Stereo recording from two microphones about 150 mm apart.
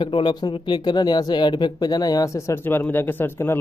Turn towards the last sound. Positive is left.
turn(degrees=15)  # may be behind; listen again after turning